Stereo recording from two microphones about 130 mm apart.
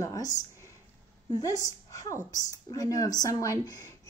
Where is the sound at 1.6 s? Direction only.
25° left (ahead or behind).